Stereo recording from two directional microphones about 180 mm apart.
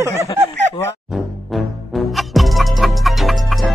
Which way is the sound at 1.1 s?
Centre (ahead or behind).